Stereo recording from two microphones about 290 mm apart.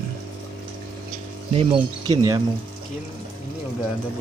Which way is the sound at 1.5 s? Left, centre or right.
Centre.